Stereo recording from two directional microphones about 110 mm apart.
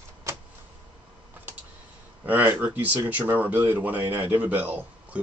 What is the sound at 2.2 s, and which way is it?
Speech, 15° right (ahead or behind).